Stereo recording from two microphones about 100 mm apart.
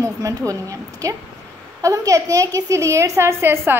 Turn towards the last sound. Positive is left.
turn(degrees=-25)  # may be behind; listen again after turning